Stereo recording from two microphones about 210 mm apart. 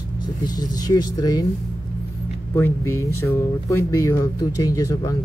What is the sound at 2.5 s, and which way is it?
Speech, 10° left (ahead or behind).